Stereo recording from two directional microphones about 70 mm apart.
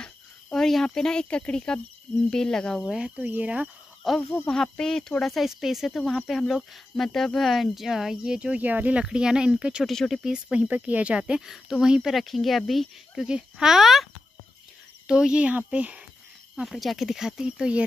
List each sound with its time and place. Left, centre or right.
0.0 s speech: centre
2.8 s speech: centre
3.2 s speech: right
4.5 s speech: centre; by 9.0 s right
9.0 s speech: centre
9.8 s speech: centre
10.2 s speech: centre
15.0 s speech: centre
16.5 s speech: centre